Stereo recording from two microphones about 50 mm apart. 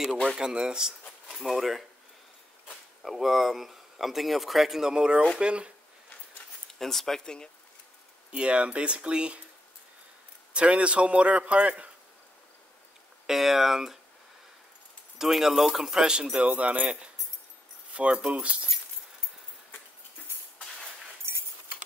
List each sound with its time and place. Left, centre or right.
0.4 s speech: centre
1.4 s speech: centre
3.0 s a man's voice: centre; by 5.7 s right
6.7 s speech: centre
8.3 s a man's voice: right
10.5 s a man's voice: right
13.3 s speech: centre
15.1 s a man's voice: centre; by 18.7 s right